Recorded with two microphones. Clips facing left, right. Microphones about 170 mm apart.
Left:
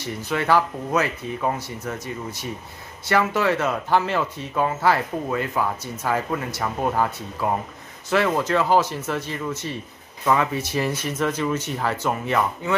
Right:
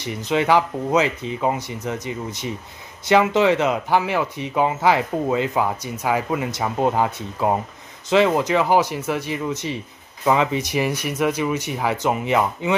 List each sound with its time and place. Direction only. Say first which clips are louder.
0.0 s speech: right 4 dB; 20° right (ahead or behind)